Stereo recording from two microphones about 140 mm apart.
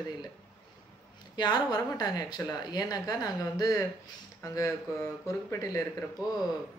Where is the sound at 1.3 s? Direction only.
30° left (ahead or behind).